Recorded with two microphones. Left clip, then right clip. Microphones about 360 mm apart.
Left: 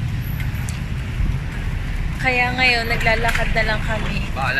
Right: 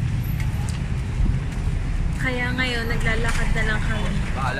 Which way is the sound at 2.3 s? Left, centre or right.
Centre.